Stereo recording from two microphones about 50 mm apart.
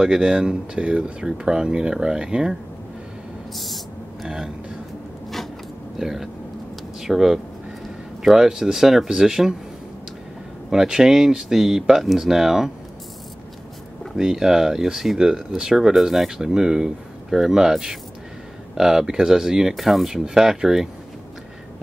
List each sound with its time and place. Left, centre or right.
0.0 s speech: centre
3.5 s a sound: centre
5.9 s speech: centre
10.7 s speech: centre
14.1 s speech: centre